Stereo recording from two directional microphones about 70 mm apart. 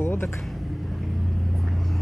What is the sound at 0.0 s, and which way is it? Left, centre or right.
Vehicle, left.